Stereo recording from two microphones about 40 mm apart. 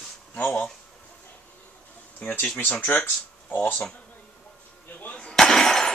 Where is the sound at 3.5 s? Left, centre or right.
Left.